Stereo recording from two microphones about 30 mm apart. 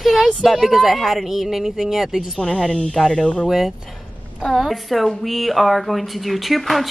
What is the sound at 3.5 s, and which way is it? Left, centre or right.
A woman's voice, centre.